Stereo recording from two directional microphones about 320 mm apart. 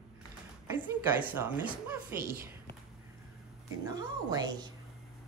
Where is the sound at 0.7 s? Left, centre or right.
Centre.